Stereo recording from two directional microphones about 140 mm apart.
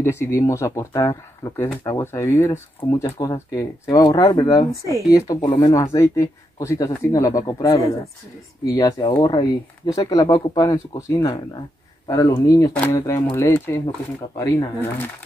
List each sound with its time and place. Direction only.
0.0 s speech: 20° left (ahead or behind)